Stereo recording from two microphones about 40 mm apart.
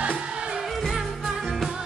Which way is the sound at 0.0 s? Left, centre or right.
Right.